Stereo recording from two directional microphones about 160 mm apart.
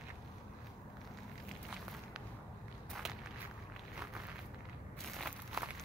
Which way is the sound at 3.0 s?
5° right (ahead or behind).